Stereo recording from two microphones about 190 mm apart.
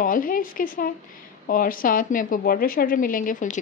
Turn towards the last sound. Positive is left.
turn(degrees=40)  # may be behind; listen again after turning